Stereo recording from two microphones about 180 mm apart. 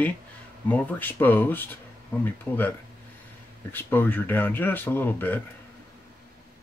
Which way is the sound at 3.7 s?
10° left (ahead or behind).